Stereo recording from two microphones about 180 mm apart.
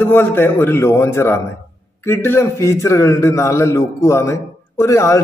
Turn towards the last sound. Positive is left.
turn(degrees=15)  # may be behind; listen again after turning